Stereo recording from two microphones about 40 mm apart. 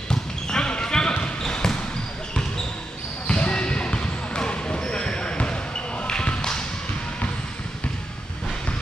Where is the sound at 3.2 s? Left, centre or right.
Left.